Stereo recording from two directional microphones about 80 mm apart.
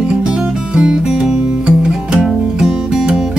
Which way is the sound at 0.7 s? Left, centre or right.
Centre.